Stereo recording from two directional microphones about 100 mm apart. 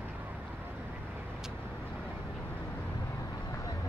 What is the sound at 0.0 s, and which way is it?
Vehicle, 20° right (ahead or behind).